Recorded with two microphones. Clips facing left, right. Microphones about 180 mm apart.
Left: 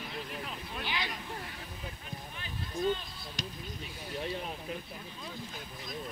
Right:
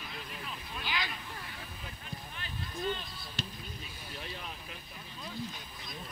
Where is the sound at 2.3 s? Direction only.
10° left (ahead or behind).